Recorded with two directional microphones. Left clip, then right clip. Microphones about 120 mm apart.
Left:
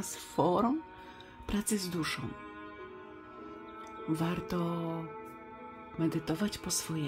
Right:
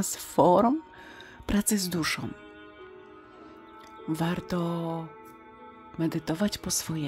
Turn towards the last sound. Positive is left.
turn(degrees=-35)  # may be behind; listen again after turning